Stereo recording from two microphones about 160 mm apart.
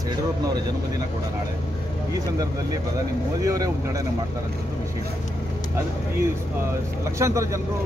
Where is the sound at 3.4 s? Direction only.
20° right (ahead or behind).